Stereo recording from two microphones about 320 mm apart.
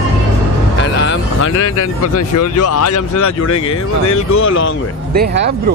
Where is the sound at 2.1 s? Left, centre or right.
Left.